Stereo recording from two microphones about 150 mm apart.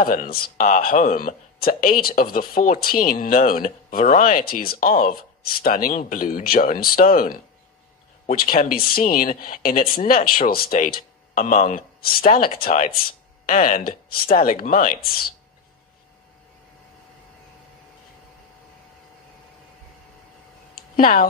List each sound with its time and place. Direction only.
0.0 s speech: 70° left (ahead or behind)
13.5 s speech: 65° left (ahead or behind); by 15.3 s 80° left
20.7 s a sound: 65° left (ahead or behind)